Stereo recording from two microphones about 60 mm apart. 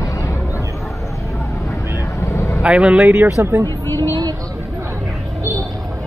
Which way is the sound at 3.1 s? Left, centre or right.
Right.